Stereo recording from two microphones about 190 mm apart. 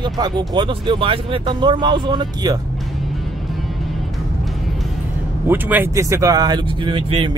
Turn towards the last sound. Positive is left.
turn(degrees=-25)  # may be behind; listen again after turning